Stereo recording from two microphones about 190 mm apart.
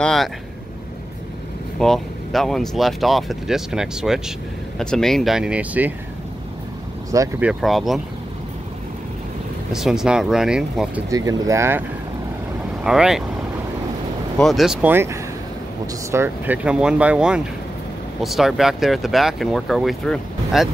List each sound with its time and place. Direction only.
0.0 s speech: centre (ahead or behind)
1.8 s speech: centre (ahead or behind)
7.1 s speech: 15° right (ahead or behind)
7.4 s speech: centre (ahead or behind)
9.7 s speech: centre (ahead or behind)
11.1 s speech: 20° right (ahead or behind)
12.8 s speech: 5° right (ahead or behind)
14.4 s speech: centre (ahead or behind)